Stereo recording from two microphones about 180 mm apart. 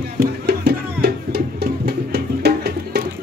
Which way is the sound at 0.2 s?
60° right (ahead or behind).